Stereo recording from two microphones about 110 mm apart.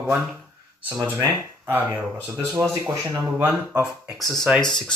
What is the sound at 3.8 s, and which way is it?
Speech, centre (ahead or behind).